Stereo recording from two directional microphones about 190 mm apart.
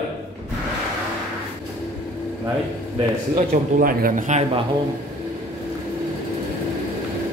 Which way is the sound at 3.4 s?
50° right (ahead or behind).